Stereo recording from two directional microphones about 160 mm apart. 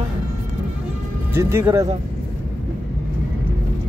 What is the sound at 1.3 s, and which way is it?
Speech, 15° right (ahead or behind).